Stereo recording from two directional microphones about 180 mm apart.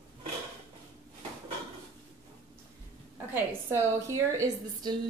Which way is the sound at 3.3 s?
15° right (ahead or behind).